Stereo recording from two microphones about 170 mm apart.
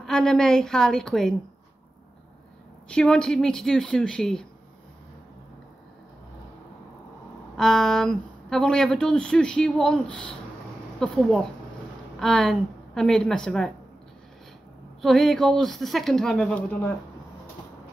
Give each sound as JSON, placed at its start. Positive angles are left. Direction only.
{"t": 0.0, "sound": "speech", "side_deg": 5}
{"t": 2.9, "sound": "speech", "side_deg": 5}
{"t": 7.5, "sound": "speech", "side_deg": 0}
{"t": 15.0, "sound": "speech", "side_deg": 0}